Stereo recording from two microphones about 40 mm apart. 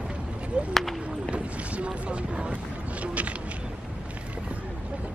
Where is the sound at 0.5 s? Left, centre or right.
Right.